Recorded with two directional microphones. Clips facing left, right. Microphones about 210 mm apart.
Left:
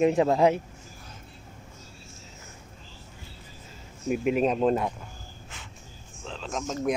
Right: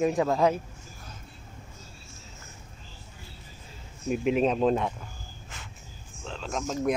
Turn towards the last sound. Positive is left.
turn(degrees=0)  # may be behind; listen again after turning